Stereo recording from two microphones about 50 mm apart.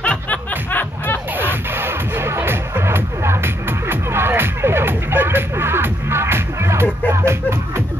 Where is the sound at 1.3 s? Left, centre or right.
Right.